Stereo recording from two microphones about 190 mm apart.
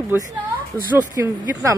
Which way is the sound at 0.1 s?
10° right (ahead or behind).